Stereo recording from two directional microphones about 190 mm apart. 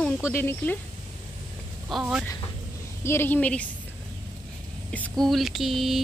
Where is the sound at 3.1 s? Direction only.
10° left (ahead or behind).